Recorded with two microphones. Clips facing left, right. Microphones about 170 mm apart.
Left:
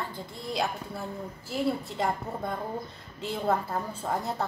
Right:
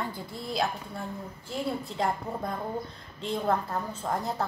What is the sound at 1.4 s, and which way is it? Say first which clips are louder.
A woman's voice: left 3 dB; 5° left (ahead or behind).